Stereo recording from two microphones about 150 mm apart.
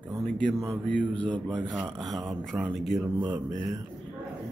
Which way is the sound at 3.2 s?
25° right (ahead or behind).